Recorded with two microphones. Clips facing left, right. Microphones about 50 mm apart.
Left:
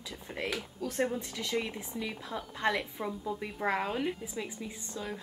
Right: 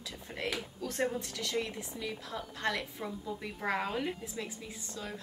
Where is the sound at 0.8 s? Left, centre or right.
Centre.